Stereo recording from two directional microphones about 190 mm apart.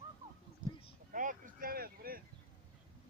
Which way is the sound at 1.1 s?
45° right (ahead or behind).